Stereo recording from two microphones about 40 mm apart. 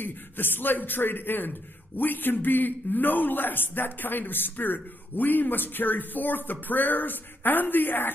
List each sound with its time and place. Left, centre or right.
0.0 s a man's voice: left